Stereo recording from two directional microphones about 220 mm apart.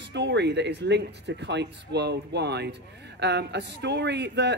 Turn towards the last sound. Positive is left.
turn(degrees=-50)  # may be behind; listen again after turning